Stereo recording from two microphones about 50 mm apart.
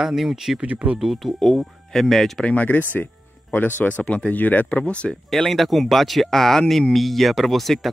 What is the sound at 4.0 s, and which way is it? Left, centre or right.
Speech, left.